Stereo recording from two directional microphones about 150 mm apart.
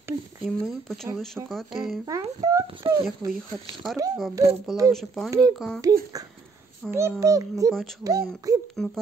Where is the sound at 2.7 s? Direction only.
35° right (ahead or behind).